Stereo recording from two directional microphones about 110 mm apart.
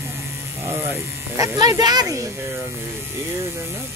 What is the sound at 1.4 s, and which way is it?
Speech, 30° right (ahead or behind).